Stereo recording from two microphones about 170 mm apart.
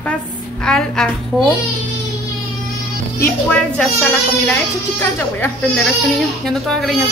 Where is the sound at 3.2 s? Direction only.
10° left (ahead or behind).